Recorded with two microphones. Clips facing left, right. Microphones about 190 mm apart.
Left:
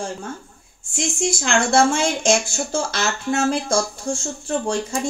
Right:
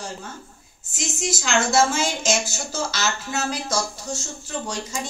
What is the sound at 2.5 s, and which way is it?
Speech, 55° left (ahead or behind).